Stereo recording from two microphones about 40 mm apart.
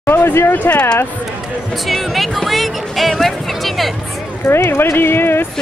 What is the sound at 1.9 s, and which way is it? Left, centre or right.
Speech, centre.